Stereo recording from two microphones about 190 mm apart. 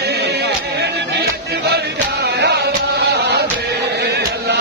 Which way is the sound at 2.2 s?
60° right (ahead or behind).